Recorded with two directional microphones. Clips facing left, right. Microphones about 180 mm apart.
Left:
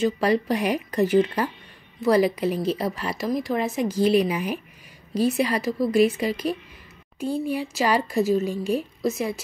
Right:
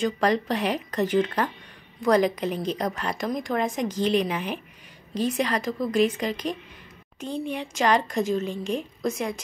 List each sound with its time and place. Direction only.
0.0 s a woman's voice: 10° left (ahead or behind)